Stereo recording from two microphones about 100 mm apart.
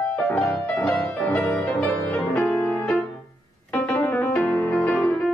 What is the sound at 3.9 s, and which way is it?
Music, 20° left (ahead or behind).